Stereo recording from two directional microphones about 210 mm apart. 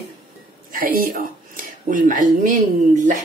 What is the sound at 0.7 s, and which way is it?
Speech, 45° right (ahead or behind).